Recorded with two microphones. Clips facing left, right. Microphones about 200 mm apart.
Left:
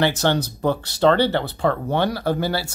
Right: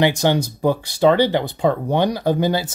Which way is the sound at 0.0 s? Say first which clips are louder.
Right 3 dB; 15° right (ahead or behind).